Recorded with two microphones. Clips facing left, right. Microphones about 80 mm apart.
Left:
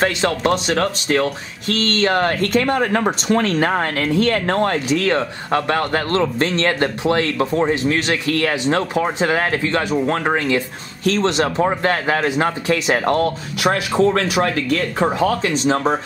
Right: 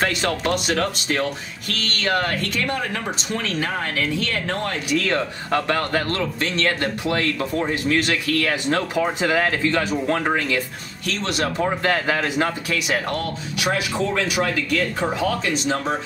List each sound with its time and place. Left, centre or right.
0.0 s speech: left
0.5 s speech: left
1.7 s speech: left
5.0 s speech: left
6.0 s speech: left
8.6 s speech: left
11.1 s speech: left
11.3 s speech: left
12.9 s speech: left